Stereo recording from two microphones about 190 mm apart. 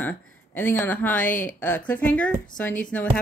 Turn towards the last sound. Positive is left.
turn(degrees=10)  # may be behind; listen again after turning